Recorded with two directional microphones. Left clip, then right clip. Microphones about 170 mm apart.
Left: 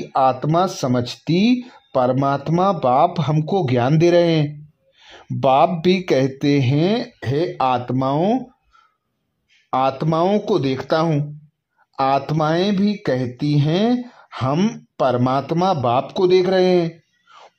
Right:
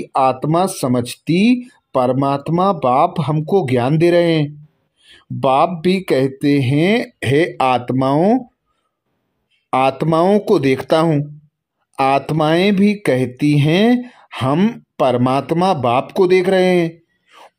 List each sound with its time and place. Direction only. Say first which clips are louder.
0.0 s speech: right 2 dB; 5° right (ahead or behind)
7.0 s speech: right 6 dB; 20° right (ahead or behind)
9.7 s speech: right 4 dB; 15° right (ahead or behind)